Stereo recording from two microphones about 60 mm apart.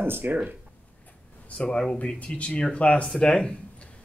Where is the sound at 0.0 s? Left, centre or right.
Right.